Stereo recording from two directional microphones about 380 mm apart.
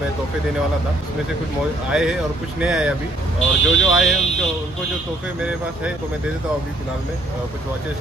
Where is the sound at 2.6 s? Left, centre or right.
Centre.